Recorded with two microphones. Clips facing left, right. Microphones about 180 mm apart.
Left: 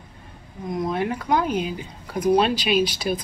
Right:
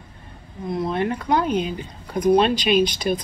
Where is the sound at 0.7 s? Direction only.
10° left (ahead or behind).